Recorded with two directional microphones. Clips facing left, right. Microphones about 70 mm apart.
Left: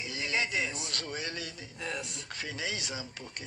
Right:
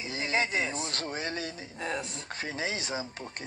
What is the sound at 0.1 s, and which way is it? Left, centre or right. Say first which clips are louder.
Speech: right 3 dB; right.